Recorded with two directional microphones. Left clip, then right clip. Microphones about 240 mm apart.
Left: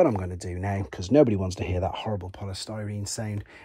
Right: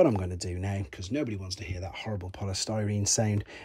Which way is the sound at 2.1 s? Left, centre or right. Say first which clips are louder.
Left 3 dB; centre.